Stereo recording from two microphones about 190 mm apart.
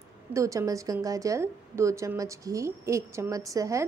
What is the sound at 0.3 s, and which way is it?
A woman's voice, 15° right (ahead or behind).